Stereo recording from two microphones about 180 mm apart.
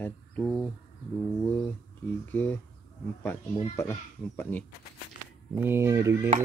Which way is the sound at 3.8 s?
15° left (ahead or behind).